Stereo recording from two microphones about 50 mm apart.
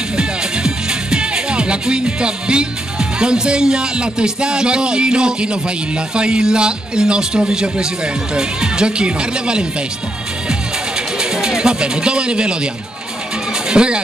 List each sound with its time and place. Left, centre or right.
0.2 s a man's voice: centre
11.1 s speech: centre
13.7 s music: centre